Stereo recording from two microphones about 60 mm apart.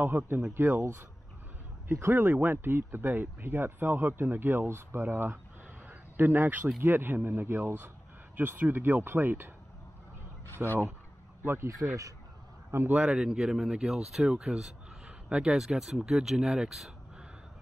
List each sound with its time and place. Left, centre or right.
0.0 s speech: right
5.9 s a sound: right
6.8 s speech: right
10.6 s speech: right
12.9 s speech: centre
15.0 s a sound: centre
15.4 s speech: centre